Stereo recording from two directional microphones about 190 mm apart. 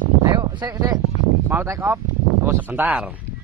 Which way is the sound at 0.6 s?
25° right (ahead or behind).